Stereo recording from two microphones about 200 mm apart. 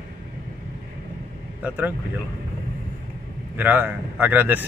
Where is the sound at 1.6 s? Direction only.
10° right (ahead or behind).